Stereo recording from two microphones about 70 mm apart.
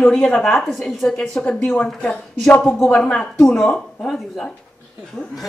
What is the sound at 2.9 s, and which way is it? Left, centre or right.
A woman's voice, centre.